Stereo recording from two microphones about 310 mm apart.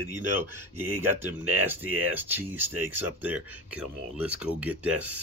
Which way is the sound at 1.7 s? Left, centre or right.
Centre.